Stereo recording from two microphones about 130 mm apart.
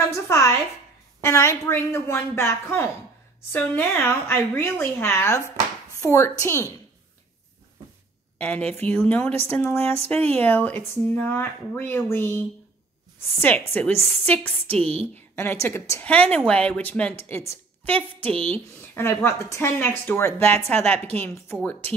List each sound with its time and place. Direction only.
0.0 s a woman's voice: 25° left (ahead or behind)
8.4 s speech: 10° left (ahead or behind)
14.7 s a woman's voice: 50° right (ahead or behind)
15.3 s a woman's voice: 20° left (ahead or behind)